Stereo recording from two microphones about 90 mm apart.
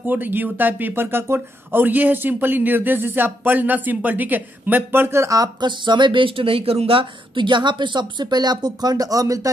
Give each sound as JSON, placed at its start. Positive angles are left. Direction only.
{"t": 0.0, "sound": "speech", "side_deg": -20}
{"t": 5.6, "sound": "speech", "side_deg": -60}